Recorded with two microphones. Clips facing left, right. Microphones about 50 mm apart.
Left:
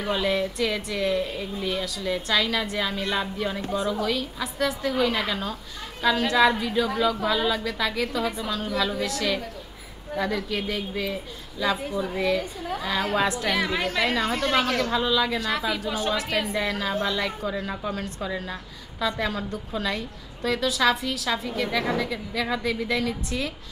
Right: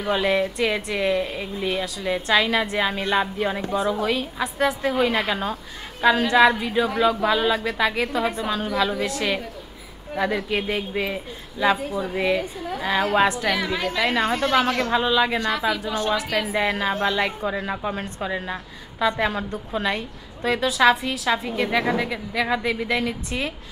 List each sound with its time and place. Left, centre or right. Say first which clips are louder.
0.1 s a woman's voice: right 4 dB; right
13.6 s a woman's voice: right 1 dB; centre
14.3 s a woman's voice: right 3 dB; centre
15.4 s a woman's voice: right 3 dB; centre
16.5 s a woman's voice: right 4 dB; right